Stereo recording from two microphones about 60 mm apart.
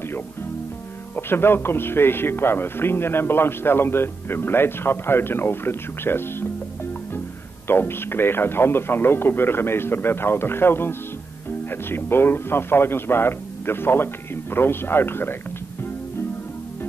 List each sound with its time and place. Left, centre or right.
1.1 s a man's voice: left
7.6 s a man's voice: left